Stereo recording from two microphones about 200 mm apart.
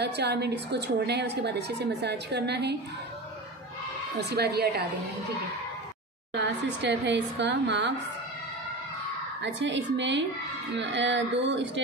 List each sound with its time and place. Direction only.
0.0 s a woman's voice: 55° right (ahead or behind)
4.2 s a woman's voice: 55° right (ahead or behind)
6.3 s a woman's voice: 60° right (ahead or behind)
9.4 s a woman's voice: 65° right (ahead or behind)